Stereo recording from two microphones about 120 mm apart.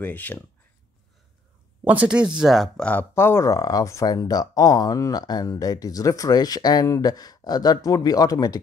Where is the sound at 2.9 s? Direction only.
15° left (ahead or behind).